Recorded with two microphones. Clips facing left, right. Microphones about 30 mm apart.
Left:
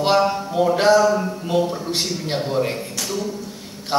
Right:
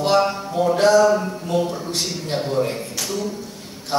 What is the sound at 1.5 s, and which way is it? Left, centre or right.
Speech, left.